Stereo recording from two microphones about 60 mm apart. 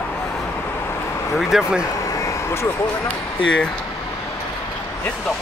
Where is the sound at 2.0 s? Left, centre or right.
Left.